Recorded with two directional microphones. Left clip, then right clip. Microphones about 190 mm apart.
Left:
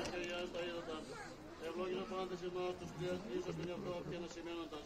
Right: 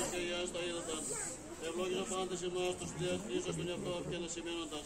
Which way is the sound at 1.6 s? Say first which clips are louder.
Right 4 dB; 30° right (ahead or behind).